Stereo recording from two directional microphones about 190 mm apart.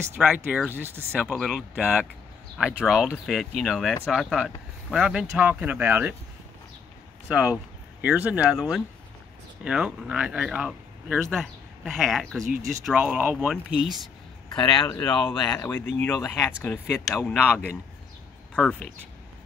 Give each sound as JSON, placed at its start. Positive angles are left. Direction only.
{"t": 0.2, "sound": "speech", "side_deg": -5}
{"t": 7.2, "sound": "speech", "side_deg": -5}
{"t": 12.4, "sound": "speech", "side_deg": -40}
{"t": 12.8, "sound": "speech", "side_deg": -5}
{"t": 14.9, "sound": "speech", "side_deg": 10}